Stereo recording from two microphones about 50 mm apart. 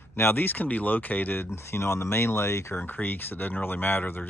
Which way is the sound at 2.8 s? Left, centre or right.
Left.